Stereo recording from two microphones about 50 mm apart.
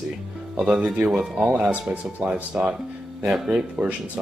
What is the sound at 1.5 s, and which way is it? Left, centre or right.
Speech, right.